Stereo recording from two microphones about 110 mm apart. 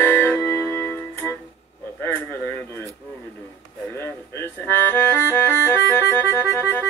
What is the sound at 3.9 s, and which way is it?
Music, 20° left (ahead or behind).